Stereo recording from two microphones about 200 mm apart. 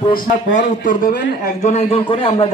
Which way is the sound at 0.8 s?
45° left (ahead or behind).